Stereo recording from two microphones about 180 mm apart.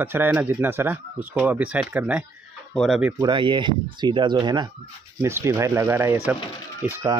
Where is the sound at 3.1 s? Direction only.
25° right (ahead or behind).